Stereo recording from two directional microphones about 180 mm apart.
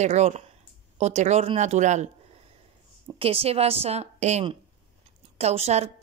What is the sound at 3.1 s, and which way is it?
A woman's voice, 30° right (ahead or behind).